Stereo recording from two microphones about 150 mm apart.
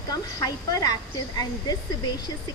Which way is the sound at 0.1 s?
25° left (ahead or behind).